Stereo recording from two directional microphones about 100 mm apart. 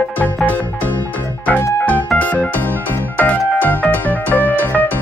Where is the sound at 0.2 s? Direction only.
15° left (ahead or behind).